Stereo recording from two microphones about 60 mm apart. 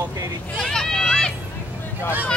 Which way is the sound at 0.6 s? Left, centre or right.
Centre.